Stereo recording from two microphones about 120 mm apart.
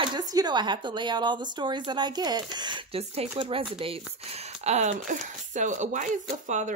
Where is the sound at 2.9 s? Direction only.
55° right (ahead or behind).